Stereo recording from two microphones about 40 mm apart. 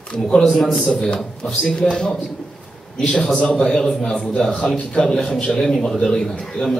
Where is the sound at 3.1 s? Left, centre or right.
Centre.